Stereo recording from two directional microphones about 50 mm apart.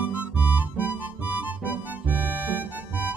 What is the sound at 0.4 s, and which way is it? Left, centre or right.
Music, right.